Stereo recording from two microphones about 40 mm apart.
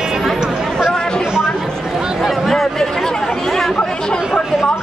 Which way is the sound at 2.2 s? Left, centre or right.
Centre.